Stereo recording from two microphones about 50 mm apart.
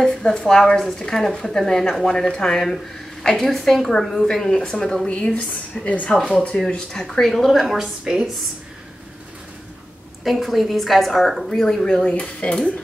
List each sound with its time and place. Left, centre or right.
0.0 s speech: centre
6.1 s a woman's voice: centre
7.6 s a woman's voice: centre
10.2 s a woman's voice: centre
11.7 s speech: centre